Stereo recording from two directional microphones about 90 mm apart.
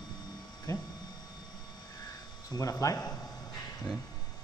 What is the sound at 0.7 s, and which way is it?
Speech, 35° left (ahead or behind).